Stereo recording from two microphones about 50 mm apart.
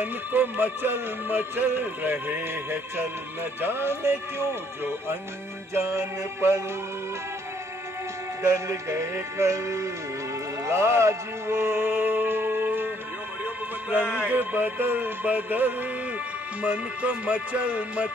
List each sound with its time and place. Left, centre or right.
0.0 s music: right
8.4 s music: right
10.7 s music: right
14.3 s music: right